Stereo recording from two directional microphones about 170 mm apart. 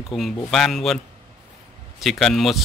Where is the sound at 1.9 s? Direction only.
Centre (ahead or behind).